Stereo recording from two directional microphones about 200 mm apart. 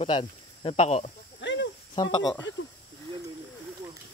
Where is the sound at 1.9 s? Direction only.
20° left (ahead or behind).